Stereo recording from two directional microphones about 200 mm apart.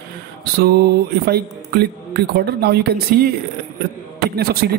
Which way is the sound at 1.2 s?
50° right (ahead or behind).